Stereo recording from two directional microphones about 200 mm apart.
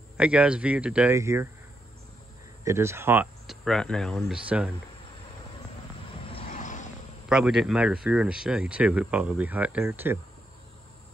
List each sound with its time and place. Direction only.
0.2 s speech: 5° right (ahead or behind)
2.6 s speech: 15° right (ahead or behind)
6.2 s a sound: 30° left (ahead or behind)
7.2 s speech: 5° right (ahead or behind)